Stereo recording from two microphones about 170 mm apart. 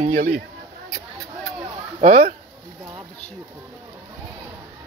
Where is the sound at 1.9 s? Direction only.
40° right (ahead or behind).